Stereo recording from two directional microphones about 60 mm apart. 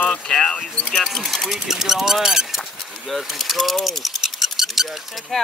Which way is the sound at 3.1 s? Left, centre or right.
Centre.